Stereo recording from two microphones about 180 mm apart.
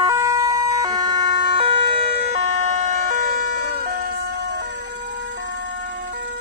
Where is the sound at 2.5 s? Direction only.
45° right (ahead or behind).